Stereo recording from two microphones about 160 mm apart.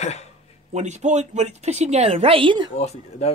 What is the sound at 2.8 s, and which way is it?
Speech, 40° left (ahead or behind).